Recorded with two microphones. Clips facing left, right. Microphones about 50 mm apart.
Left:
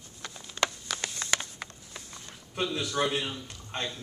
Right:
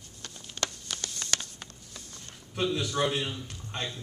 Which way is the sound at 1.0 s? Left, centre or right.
Left.